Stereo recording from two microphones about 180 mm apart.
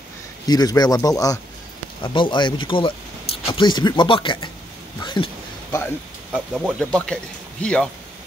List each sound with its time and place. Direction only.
0.5 s speech: 20° left (ahead or behind)
6.3 s speech: 5° right (ahead or behind)